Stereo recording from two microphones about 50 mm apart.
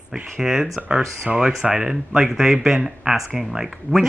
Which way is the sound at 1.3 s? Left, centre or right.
Centre.